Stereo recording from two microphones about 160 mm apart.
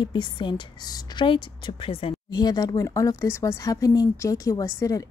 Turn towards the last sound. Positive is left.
turn(degrees=20)  # may be behind; listen again after turning